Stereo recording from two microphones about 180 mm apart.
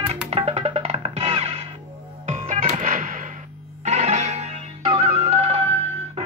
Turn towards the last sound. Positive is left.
turn(degrees=-35)  # may be behind; listen again after turning